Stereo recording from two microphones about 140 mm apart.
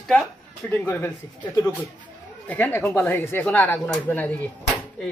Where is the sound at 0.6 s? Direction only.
15° left (ahead or behind).